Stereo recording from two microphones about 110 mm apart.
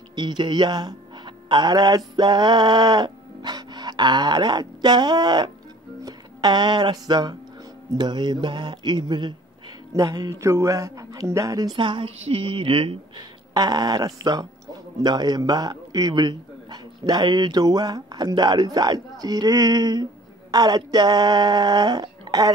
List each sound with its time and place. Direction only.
0.1 s a man's voice: 45° right (ahead or behind)
13.5 s a man's voice: 35° right (ahead or behind)